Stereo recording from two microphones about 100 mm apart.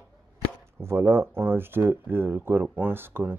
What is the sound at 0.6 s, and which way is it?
Speech, 25° right (ahead or behind).